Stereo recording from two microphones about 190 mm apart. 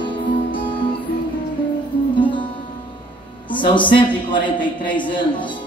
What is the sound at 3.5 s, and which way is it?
A man's voice, 25° left (ahead or behind).